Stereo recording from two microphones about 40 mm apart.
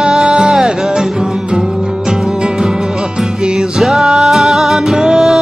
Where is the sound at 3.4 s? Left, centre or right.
Centre.